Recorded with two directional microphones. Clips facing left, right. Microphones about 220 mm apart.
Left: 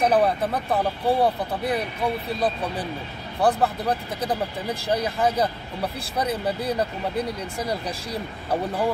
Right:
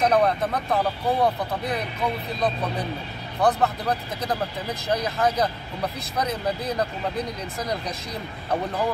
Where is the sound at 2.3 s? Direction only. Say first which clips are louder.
Even; 30° left (ahead or behind).